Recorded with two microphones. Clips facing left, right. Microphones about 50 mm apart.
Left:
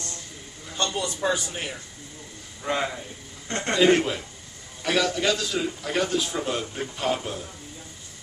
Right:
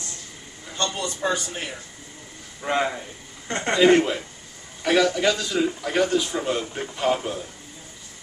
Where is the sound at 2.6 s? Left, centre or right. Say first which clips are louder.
Right 3 dB; centre.